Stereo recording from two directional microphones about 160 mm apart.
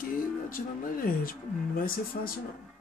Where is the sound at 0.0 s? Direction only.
60° left (ahead or behind).